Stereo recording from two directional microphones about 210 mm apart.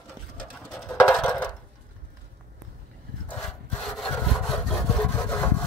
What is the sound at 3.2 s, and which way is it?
Sawing, 5° left (ahead or behind).